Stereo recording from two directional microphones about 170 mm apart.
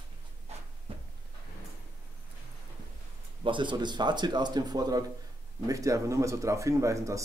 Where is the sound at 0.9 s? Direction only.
35° right (ahead or behind).